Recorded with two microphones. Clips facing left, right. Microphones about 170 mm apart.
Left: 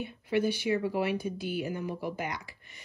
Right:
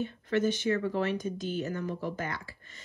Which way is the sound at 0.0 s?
10° left (ahead or behind).